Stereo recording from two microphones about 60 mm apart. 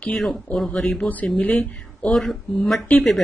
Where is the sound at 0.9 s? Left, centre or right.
Left.